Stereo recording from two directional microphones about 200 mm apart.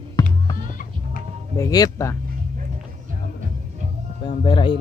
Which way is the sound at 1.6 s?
15° left (ahead or behind).